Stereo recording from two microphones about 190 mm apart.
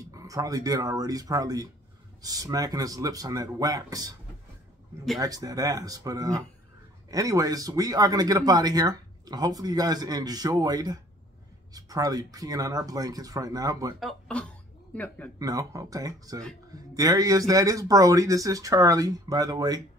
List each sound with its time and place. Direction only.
0.1 s speech: 20° right (ahead or behind)
5.2 s speech: 20° right (ahead or behind)
13.9 s speech: centre (ahead or behind)
15.3 s speech: 20° right (ahead or behind)